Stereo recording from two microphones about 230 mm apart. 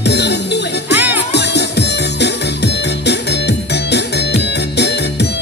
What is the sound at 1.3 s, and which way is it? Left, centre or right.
Music, left.